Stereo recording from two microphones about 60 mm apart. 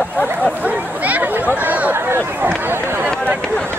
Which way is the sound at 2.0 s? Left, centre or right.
Right.